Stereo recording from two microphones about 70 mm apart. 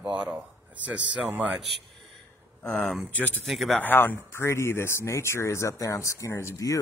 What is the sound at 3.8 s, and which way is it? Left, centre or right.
Speech, left.